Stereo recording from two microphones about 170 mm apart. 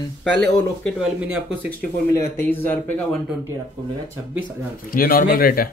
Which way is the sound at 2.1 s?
10° left (ahead or behind).